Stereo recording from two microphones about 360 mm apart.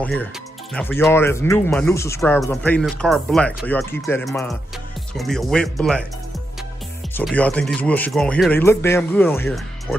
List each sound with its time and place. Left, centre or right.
0.0 s speech: centre
7.2 s speech: centre